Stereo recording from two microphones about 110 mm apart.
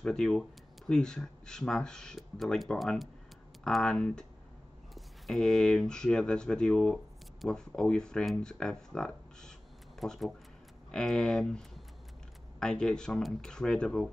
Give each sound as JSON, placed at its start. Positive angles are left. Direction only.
{"t": 0.0, "sound": "speech", "side_deg": 5}